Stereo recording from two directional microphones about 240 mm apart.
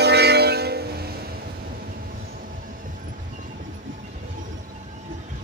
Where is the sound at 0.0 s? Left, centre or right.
Right.